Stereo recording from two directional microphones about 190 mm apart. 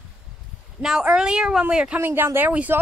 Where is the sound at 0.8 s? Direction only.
5° right (ahead or behind).